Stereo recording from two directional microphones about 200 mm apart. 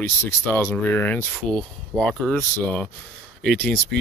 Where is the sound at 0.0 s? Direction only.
10° left (ahead or behind).